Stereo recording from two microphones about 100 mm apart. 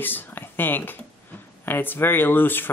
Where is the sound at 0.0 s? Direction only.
20° left (ahead or behind).